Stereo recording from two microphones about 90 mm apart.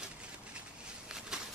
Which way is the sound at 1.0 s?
10° right (ahead or behind).